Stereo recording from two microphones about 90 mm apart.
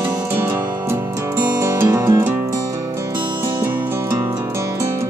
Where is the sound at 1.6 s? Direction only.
30° right (ahead or behind).